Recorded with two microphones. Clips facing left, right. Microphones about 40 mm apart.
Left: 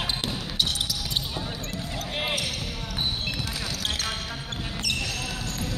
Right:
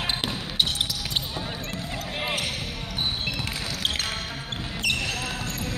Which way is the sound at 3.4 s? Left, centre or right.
Right.